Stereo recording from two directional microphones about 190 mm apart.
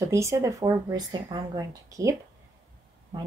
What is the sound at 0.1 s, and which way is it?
Speech, 15° right (ahead or behind).